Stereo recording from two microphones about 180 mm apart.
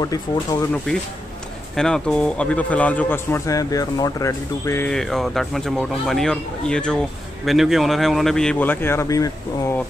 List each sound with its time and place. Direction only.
0.0 s speech: 20° left (ahead or behind)
1.8 s a man's voice: 5° left (ahead or behind)
4.9 s speech: centre (ahead or behind); by 9.8 s 20° left (ahead or behind)